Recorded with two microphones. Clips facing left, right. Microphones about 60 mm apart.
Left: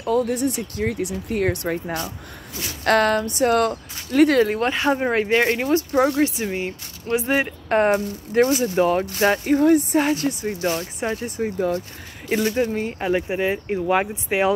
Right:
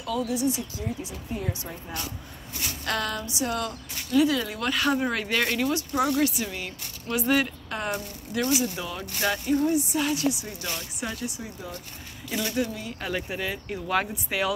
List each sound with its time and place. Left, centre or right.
0.0 s speech: left
4.6 s speech: left
7.7 s speech: left
9.4 s speech: left
12.3 s speech: left
13.0 s speech: left